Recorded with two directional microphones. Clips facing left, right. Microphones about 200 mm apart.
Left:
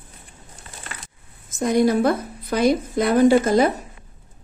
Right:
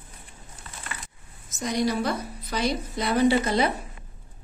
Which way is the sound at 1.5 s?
50° left (ahead or behind).